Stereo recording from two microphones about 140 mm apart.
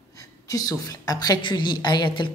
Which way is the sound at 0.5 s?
25° left (ahead or behind).